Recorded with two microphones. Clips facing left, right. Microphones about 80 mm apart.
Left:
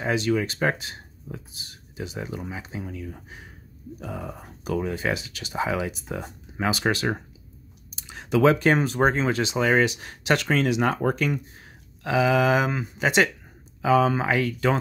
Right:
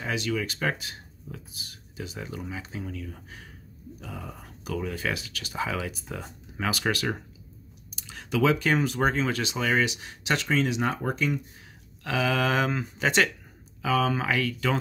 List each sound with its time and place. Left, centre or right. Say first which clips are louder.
0.0 s speech: left 6 dB; left
8.1 s computer keyboard: left 5 dB; left
8.4 s speech: left 4 dB; left
9.8 s speech: left 5 dB; left
12.0 s speech: left 5 dB; centre
13.8 s speech: left 5 dB; left